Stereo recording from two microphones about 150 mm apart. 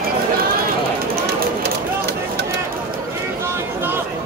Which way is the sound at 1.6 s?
90° right.